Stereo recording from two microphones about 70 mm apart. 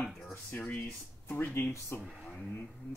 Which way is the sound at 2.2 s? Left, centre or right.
Centre.